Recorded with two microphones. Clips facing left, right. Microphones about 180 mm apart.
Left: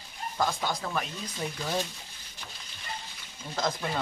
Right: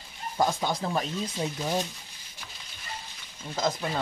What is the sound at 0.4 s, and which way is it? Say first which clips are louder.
Speech: right 3 dB; 20° right (ahead or behind).